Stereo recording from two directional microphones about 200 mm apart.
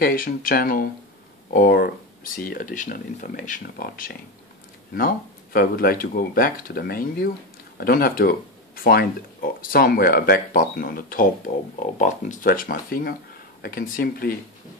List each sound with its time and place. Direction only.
0.0 s speech: 45° left (ahead or behind)